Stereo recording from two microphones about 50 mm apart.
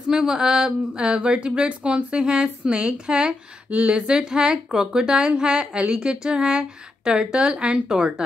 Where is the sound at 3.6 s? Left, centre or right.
Right.